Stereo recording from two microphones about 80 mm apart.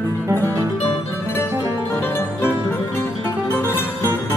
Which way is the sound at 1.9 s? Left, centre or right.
Left.